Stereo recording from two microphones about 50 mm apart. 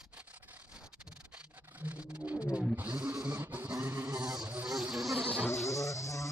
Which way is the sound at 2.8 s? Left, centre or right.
Right.